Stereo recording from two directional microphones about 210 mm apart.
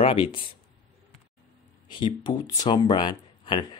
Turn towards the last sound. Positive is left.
turn(degrees=20)  # may be behind; listen again after turning